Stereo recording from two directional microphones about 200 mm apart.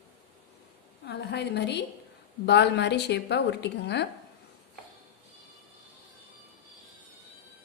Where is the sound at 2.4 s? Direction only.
60° left (ahead or behind).